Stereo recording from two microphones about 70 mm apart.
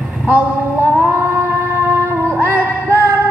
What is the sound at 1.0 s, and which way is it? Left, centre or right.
Music, right.